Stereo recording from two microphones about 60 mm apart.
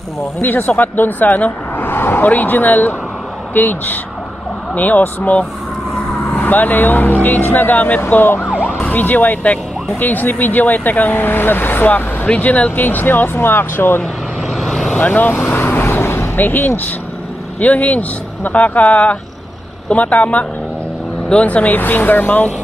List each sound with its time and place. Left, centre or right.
0.4 s speech: left
14.5 s vehicle: centre
15.0 s vehicle: left
17.6 s speech: left